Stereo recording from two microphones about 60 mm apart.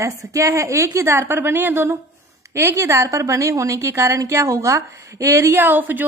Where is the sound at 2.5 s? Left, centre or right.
Right.